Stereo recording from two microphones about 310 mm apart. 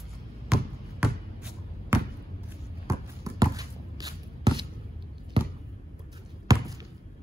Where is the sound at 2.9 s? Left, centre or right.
Centre.